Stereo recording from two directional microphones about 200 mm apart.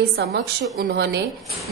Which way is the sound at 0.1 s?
55° right (ahead or behind).